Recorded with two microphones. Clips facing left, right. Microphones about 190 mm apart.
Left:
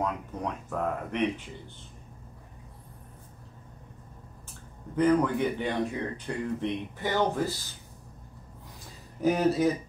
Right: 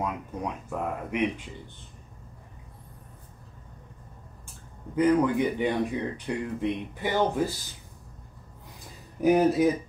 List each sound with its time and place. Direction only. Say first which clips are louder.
0.0 s speech: even; 10° right (ahead or behind)
4.9 s speech: right 2 dB; 15° right (ahead or behind)
9.2 s speech: right 3 dB; 15° right (ahead or behind)